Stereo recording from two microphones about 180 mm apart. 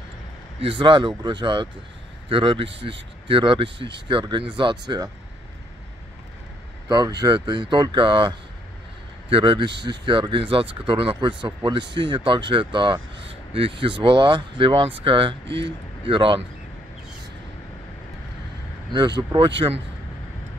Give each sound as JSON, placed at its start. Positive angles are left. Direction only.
{"t": 0.6, "sound": "speech", "side_deg": -30}
{"t": 3.7, "sound": "speech", "side_deg": -75}
{"t": 4.1, "sound": "speech", "side_deg": -25}
{"t": 6.9, "sound": "speech", "side_deg": -20}
{"t": 15.4, "sound": "speech", "side_deg": -75}
{"t": 16.1, "sound": "speech", "side_deg": -30}
{"t": 18.9, "sound": "speech", "side_deg": -25}